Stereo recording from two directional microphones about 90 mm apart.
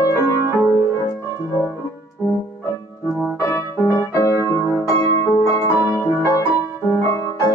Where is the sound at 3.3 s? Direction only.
30° left (ahead or behind).